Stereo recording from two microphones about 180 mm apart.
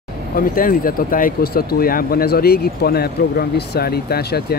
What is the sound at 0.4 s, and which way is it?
Speech, 50° left (ahead or behind).